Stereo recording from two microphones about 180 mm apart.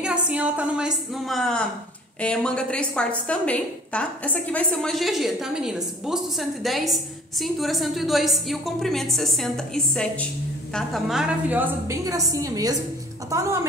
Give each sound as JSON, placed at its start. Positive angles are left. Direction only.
{"t": 0.0, "sound": "a woman's voice", "side_deg": -5}
{"t": 10.7, "sound": "a woman's voice", "side_deg": 0}